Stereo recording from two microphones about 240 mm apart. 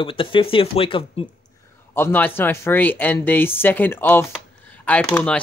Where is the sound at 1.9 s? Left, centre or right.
Centre.